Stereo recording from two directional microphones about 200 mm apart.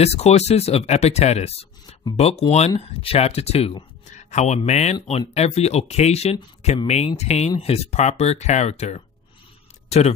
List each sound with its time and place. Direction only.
0.0 s speech: 30° left (ahead or behind)